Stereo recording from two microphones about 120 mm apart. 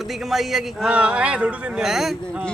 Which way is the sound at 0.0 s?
Centre (ahead or behind).